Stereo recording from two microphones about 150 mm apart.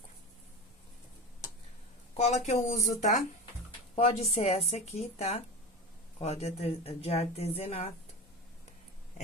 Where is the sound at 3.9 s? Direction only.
45° left (ahead or behind).